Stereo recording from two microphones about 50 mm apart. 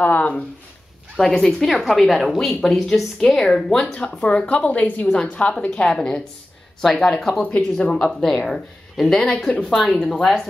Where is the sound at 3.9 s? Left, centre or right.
Left.